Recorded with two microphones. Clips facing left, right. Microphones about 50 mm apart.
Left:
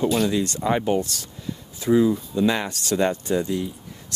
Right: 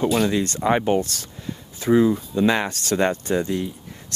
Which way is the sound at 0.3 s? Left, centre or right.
Right.